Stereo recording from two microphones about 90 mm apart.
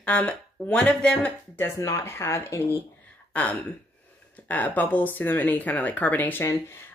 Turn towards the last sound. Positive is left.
turn(degrees=20)  # may be behind; listen again after turning